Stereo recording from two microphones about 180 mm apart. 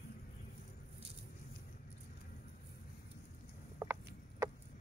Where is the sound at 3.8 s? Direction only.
15° right (ahead or behind).